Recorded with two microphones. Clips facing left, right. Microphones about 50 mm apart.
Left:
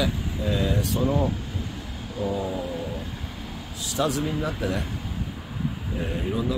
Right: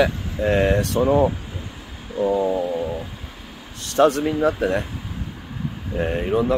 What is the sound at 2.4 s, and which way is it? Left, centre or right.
Train, centre.